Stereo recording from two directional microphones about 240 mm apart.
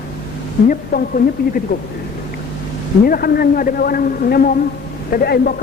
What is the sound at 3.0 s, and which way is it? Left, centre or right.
A man's voice, left.